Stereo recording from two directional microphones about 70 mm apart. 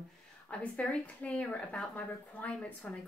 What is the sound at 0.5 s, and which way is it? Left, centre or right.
Speech, centre.